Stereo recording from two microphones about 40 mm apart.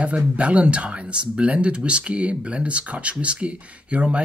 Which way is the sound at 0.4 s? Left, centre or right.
Right.